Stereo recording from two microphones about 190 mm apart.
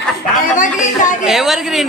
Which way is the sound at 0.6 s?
40° left (ahead or behind).